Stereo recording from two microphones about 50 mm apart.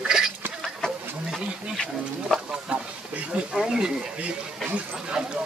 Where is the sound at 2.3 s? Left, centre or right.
Centre.